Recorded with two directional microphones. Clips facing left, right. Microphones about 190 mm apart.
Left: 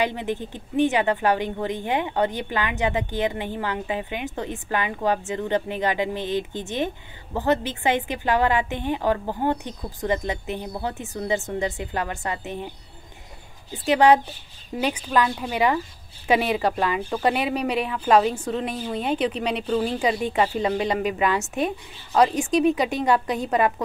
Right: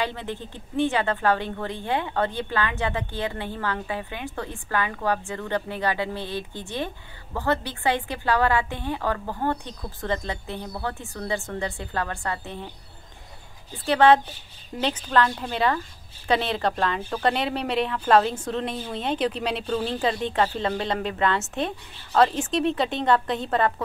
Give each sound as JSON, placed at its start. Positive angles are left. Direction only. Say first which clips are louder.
{"t": 0.0, "sound": "a woman's voice", "louder": "left 4 dB", "side_deg": 15}
{"t": 13.8, "sound": "speech", "louder": "left 1 dB", "side_deg": 15}